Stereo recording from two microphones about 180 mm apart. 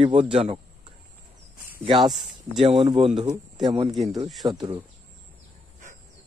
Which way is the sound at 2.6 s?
30° right (ahead or behind).